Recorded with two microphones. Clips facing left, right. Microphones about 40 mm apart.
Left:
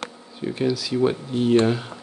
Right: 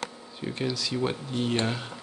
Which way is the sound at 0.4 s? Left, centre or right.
Centre.